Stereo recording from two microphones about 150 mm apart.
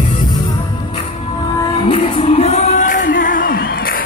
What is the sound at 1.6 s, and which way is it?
Music, 35° left (ahead or behind).